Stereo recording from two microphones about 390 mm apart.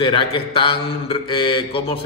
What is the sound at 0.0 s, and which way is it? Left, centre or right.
Speech, centre.